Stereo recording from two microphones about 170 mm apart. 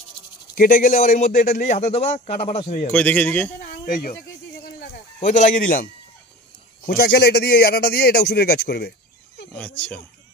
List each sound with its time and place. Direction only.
0.6 s speech: 55° left (ahead or behind)
2.9 s a man's voice: 10° left (ahead or behind)
3.8 s a man's voice: 60° left (ahead or behind)
5.2 s speech: 45° left (ahead or behind)
6.8 s a man's voice: 60° left (ahead or behind)
9.6 s a man's voice: 5° left (ahead or behind)